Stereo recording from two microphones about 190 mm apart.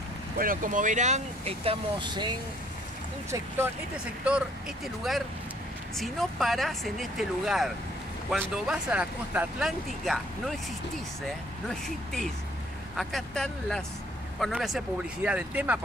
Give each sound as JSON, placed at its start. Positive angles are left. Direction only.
{"t": 0.4, "sound": "speech", "side_deg": -45}
{"t": 3.3, "sound": "speech", "side_deg": -10}
{"t": 5.9, "sound": "speech", "side_deg": 0}